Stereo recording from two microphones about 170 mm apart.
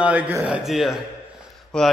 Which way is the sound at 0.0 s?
10° right (ahead or behind).